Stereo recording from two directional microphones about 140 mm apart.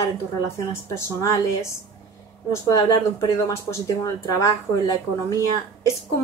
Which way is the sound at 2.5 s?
25° left (ahead or behind).